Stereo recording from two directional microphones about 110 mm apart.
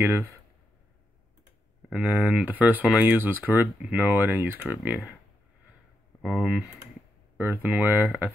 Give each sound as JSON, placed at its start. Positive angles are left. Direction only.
{"t": 1.9, "sound": "speech", "side_deg": -15}
{"t": 6.2, "sound": "speech", "side_deg": -5}
{"t": 7.3, "sound": "speech", "side_deg": -20}